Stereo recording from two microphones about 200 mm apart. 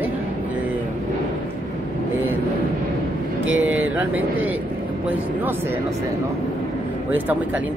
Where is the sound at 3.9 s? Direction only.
10° right (ahead or behind).